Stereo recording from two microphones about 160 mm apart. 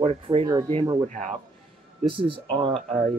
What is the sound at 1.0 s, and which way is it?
Speech, 50° right (ahead or behind).